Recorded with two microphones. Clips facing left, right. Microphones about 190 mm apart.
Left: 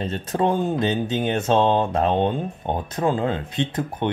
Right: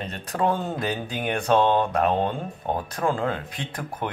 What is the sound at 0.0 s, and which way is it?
Speech, 25° left (ahead or behind).